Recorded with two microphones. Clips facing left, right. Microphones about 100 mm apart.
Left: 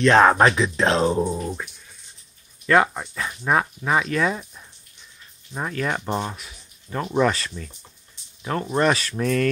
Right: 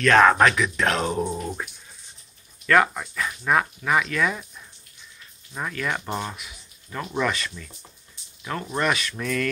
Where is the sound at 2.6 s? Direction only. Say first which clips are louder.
Left 1 dB; 25° left (ahead or behind).